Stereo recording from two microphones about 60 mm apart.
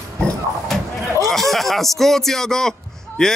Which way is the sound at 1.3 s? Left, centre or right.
Centre.